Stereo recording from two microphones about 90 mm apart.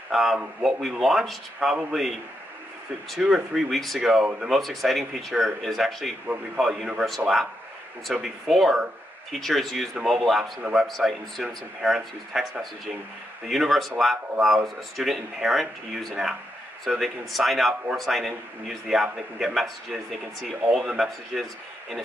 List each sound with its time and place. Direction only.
0.1 s a man's voice: centre (ahead or behind)
3.2 s a man's voice: 5° right (ahead or behind)
6.2 s a man's voice: 15° right (ahead or behind)
10.9 s a man's voice: centre (ahead or behind)